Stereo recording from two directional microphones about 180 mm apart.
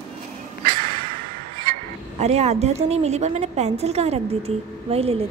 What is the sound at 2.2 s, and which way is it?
A woman's voice, 35° right (ahead or behind).